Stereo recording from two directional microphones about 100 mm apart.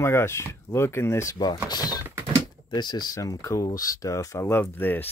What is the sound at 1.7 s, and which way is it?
Typing, 40° left (ahead or behind).